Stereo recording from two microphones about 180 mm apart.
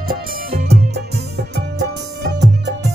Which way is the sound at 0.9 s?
65° right (ahead or behind).